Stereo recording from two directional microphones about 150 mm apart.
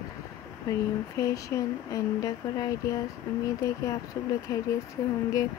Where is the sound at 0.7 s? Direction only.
20° left (ahead or behind).